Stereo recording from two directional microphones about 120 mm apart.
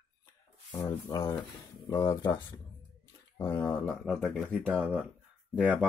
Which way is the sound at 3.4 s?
15° left (ahead or behind).